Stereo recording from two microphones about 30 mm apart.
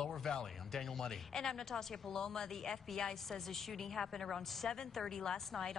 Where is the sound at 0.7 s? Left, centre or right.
Centre.